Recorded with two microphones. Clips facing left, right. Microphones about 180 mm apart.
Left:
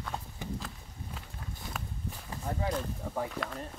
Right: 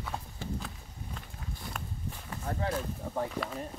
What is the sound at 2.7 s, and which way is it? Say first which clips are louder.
Speech: even; centre (ahead or behind).